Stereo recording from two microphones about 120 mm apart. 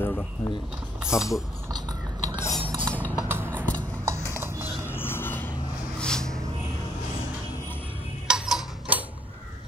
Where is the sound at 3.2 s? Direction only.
20° right (ahead or behind).